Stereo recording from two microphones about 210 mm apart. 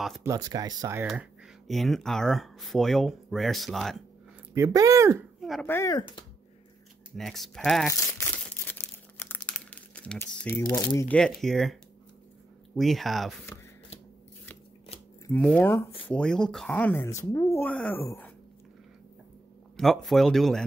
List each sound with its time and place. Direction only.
0.2 s speech: 15° right (ahead or behind)
1.7 s speech: centre (ahead or behind)
4.6 s speech: 15° right (ahead or behind)
5.4 s speech: centre (ahead or behind)
7.2 s speech: centre (ahead or behind)
8.2 s crumpling: 10° left (ahead or behind)
11.1 s speech: centre (ahead or behind)
12.7 s speech: centre (ahead or behind)
15.2 s speech: 5° left (ahead or behind)
19.8 s speech: centre (ahead or behind)